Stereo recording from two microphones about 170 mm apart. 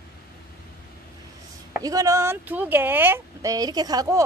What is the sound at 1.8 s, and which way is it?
Speech, 20° right (ahead or behind).